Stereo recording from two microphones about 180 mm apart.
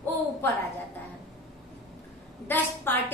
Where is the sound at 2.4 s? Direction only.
10° left (ahead or behind).